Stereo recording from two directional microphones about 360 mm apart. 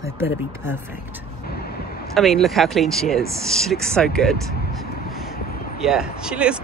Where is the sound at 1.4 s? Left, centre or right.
Left.